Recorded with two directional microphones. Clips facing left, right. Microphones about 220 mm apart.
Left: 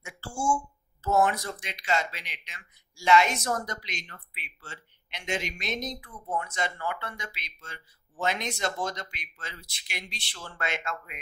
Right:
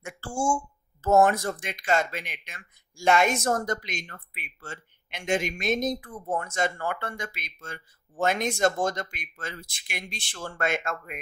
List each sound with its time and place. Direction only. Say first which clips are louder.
0.0 s speech: right 3 dB; 50° right (ahead or behind)